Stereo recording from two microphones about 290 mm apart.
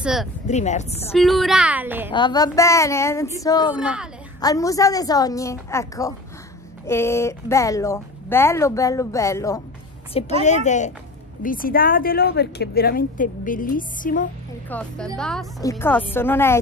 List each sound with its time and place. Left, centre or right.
0.0 s speech: centre
0.5 s a woman's voice: left
1.1 s a woman's voice: centre
2.0 s speech: centre
3.7 s a woman's voice: centre
4.4 s speech: centre
10.4 s a woman's voice: left
14.7 s a woman's voice: centre